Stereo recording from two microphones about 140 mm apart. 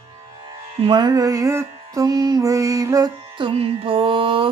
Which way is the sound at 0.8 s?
30° right (ahead or behind).